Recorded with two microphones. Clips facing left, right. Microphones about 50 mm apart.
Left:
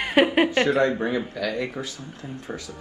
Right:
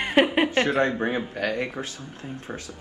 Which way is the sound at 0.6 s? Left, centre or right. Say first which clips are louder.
Left 2 dB; right.